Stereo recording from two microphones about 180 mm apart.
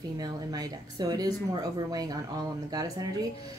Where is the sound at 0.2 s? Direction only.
20° right (ahead or behind).